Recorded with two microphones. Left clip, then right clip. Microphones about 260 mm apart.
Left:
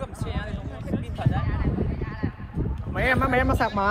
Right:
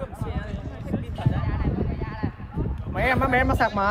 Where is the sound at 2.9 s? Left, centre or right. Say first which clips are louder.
Right 1 dB; right.